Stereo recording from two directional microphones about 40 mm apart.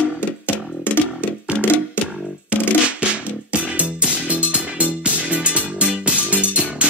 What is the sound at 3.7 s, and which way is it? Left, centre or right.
Music, right.